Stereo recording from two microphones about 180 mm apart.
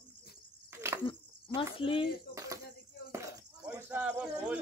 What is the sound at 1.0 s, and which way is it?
Speech, 30° left (ahead or behind).